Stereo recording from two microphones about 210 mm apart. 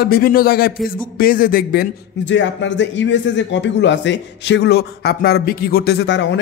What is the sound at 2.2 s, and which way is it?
A man's voice, 60° left (ahead or behind).